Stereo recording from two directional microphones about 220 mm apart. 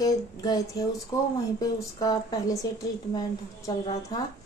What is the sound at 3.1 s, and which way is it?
Speech, 20° left (ahead or behind).